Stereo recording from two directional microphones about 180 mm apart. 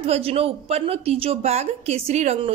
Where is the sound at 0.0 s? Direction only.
35° right (ahead or behind).